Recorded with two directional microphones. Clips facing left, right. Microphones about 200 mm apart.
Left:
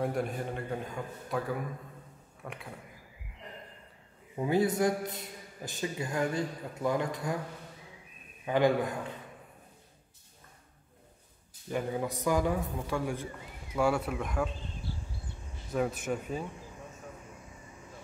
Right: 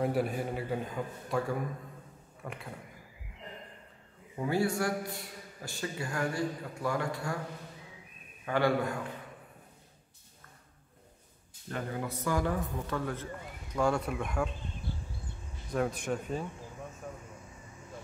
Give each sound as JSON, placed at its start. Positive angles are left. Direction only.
{"t": 0.0, "sound": "a man's voice", "side_deg": -5}
{"t": 4.4, "sound": "a man's voice", "side_deg": 20}
{"t": 8.5, "sound": "a man's voice", "side_deg": 15}
{"t": 11.7, "sound": "a man's voice", "side_deg": 15}
{"t": 15.7, "sound": "a man's voice", "side_deg": 5}